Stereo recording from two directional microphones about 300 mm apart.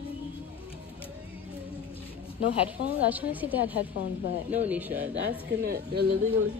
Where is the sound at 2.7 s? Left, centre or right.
Centre.